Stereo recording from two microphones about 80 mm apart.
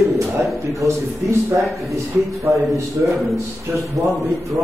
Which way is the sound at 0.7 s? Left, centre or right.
Right.